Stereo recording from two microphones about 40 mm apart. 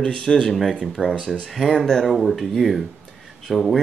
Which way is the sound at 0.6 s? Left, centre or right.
Centre.